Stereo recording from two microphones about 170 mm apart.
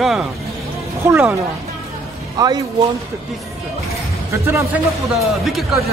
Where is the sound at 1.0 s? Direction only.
10° right (ahead or behind).